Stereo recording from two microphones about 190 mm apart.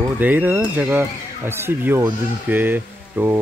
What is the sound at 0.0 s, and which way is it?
Speech, 10° right (ahead or behind).